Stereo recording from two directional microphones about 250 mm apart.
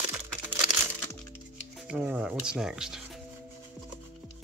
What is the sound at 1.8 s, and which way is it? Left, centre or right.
Speech, centre.